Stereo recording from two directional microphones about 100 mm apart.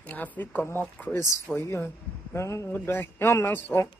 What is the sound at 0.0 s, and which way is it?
Speech, 15° left (ahead or behind).